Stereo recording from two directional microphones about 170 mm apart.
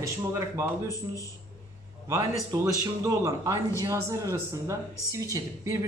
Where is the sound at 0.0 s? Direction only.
15° right (ahead or behind).